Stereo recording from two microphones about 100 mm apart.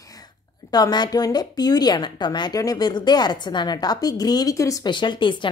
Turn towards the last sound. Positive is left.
turn(degrees=50)  # may be behind; listen again after turning